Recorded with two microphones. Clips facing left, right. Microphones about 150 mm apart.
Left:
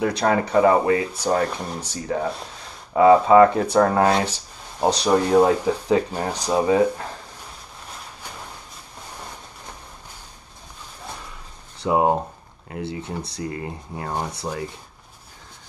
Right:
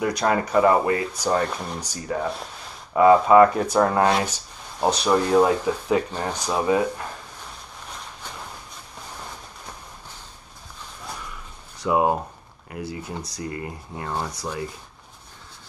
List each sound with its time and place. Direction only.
0.0 s speech: 25° left (ahead or behind)
11.8 s speech: 25° left (ahead or behind)